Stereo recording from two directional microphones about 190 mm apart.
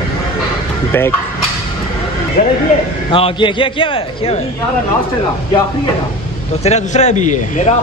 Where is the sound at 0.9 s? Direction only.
10° left (ahead or behind).